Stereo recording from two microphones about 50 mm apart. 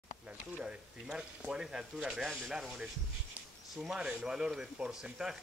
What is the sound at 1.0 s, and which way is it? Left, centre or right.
Speech, centre.